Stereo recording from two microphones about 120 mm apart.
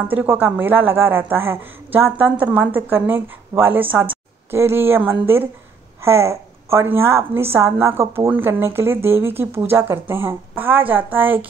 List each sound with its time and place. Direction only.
0.1 s a woman's voice: 15° right (ahead or behind)